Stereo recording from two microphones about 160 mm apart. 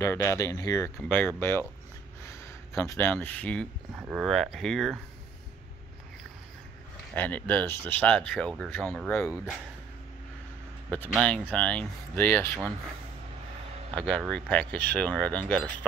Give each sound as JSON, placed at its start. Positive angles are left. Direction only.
{"t": 0.0, "sound": "speech", "side_deg": 20}
{"t": 0.9, "sound": "speech", "side_deg": 10}
{"t": 4.0, "sound": "speech", "side_deg": 0}
{"t": 7.2, "sound": "speech", "side_deg": 10}
{"t": 9.3, "sound": "speech", "side_deg": -5}
{"t": 11.1, "sound": "speech", "side_deg": 0}
{"t": 13.9, "sound": "speech", "side_deg": 5}